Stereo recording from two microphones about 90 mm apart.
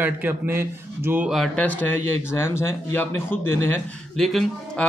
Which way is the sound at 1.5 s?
20° left (ahead or behind).